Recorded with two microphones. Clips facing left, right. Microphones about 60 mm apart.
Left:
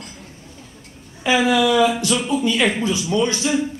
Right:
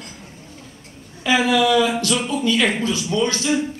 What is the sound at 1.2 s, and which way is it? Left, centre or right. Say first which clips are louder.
Speech: even; left.